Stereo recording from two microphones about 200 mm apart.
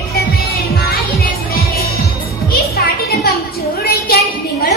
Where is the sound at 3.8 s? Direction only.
50° left (ahead or behind).